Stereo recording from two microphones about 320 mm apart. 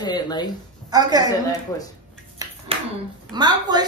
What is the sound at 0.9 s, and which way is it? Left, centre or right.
Speech, centre.